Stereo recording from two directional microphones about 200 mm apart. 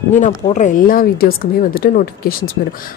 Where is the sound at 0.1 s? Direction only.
35° left (ahead or behind).